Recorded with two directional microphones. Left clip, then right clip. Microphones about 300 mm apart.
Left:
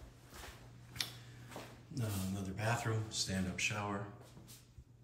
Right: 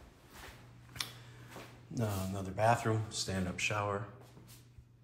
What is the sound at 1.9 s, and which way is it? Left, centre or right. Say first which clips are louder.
Speech: right 5 dB; centre.